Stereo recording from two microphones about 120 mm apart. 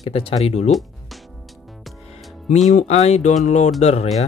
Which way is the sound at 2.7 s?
75° left (ahead or behind).